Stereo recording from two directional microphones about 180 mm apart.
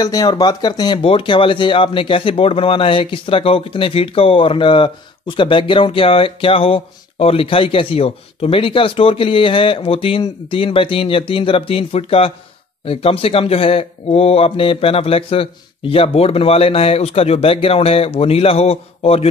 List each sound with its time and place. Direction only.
0.0 s speech: 20° left (ahead or behind)